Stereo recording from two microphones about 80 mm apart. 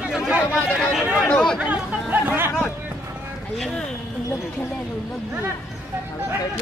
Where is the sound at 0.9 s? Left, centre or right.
Centre.